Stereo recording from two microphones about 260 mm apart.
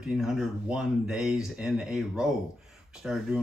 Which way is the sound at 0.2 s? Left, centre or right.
Centre.